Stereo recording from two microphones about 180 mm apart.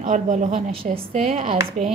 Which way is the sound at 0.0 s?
45° right (ahead or behind).